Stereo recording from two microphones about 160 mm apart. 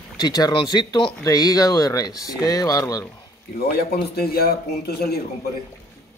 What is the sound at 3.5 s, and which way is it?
Speech, 75° left (ahead or behind).